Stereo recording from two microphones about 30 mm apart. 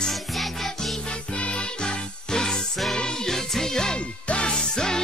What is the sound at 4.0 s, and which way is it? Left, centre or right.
Music, left.